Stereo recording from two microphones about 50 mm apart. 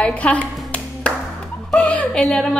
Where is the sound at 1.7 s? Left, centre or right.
Left.